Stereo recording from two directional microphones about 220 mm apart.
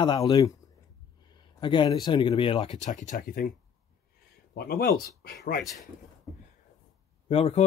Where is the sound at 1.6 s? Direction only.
20° left (ahead or behind); by 3.4 s 35° left (ahead or behind).